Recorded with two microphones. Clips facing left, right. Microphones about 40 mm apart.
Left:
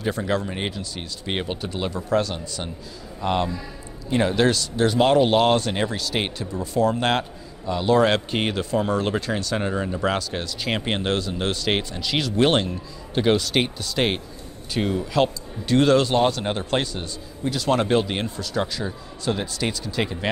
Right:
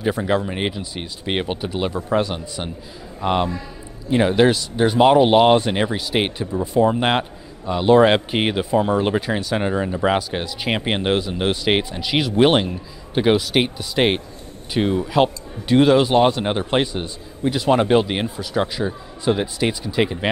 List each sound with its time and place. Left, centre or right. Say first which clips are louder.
0.0 s speech: right 4 dB; centre